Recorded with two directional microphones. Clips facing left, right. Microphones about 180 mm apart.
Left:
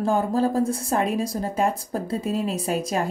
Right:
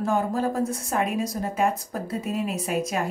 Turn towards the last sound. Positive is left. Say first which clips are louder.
# left 2 dB
turn(degrees=35)  # may be behind; listen again after turning